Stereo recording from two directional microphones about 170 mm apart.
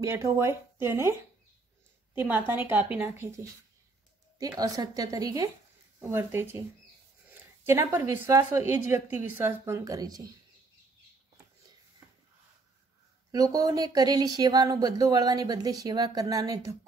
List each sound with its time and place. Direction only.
0.0 s a woman's voice: 15° right (ahead or behind)
2.1 s a woman's voice: 10° right (ahead or behind)
4.4 s a woman's voice: 20° right (ahead or behind)
7.6 s a woman's voice: 15° right (ahead or behind)
13.3 s speech: 20° right (ahead or behind)